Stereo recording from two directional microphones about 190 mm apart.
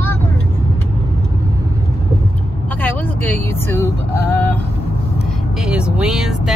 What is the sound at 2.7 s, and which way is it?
Vehicle, 10° left (ahead or behind).